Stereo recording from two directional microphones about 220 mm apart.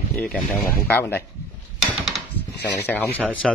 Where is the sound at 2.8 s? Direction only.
10° left (ahead or behind).